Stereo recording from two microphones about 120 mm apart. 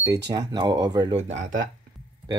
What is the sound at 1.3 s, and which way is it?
Speech, 90° right.